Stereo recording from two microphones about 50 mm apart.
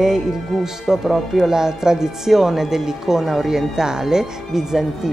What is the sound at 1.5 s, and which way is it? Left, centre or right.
Speech, centre.